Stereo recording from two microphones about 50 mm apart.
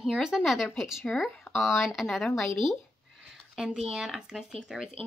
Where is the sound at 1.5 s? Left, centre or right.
Centre.